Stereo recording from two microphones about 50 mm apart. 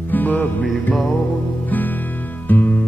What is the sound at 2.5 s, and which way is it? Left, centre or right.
Music, left.